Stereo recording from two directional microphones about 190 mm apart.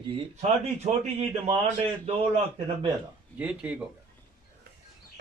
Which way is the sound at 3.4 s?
5° right (ahead or behind).